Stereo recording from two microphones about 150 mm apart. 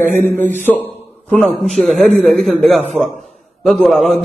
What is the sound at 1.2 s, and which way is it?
A man's voice, centre (ahead or behind).